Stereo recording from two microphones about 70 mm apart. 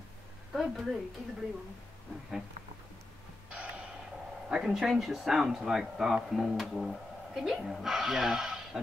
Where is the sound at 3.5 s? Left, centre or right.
Centre.